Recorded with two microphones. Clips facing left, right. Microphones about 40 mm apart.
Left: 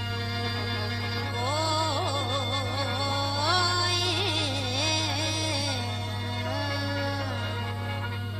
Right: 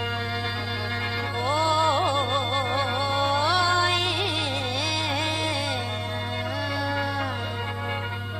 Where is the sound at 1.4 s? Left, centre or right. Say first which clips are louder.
Right 6 dB; right.